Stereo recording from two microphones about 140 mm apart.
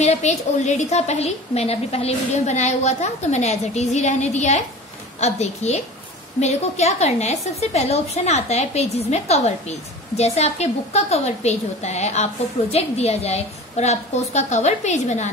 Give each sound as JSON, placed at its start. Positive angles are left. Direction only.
{"t": 0.0, "sound": "a woman's voice", "side_deg": 55}